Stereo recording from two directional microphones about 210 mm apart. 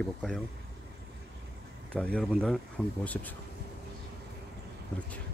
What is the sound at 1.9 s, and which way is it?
Speech, 5° left (ahead or behind).